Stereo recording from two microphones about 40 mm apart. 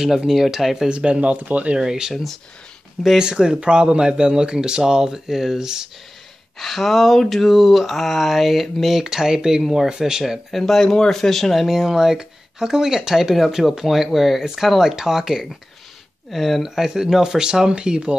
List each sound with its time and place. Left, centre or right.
0.3 s speech: centre
0.9 s speech: right
1.8 s speech: centre
3.2 s speech: right
6.6 s speech: centre
9.0 s speech: centre
10.5 s speech: centre
11.6 s speech: centre
16.3 s speech: centre
16.6 s speech: centre